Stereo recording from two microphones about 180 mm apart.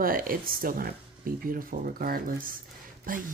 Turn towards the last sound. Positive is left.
turn(degrees=-50)  # may be behind; listen again after turning